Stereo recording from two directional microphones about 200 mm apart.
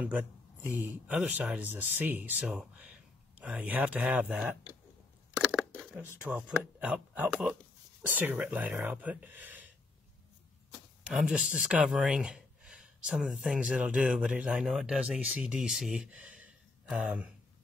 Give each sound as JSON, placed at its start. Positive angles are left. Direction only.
{"t": 0.0, "sound": "speech", "side_deg": -5}
{"t": 5.3, "sound": "a sound", "side_deg": -5}
{"t": 6.1, "sound": "speech", "side_deg": -5}
{"t": 11.1, "sound": "speech", "side_deg": -5}